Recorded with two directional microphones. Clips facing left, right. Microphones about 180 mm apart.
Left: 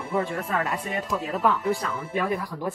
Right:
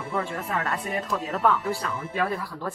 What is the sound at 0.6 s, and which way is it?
Speech, 10° left (ahead or behind).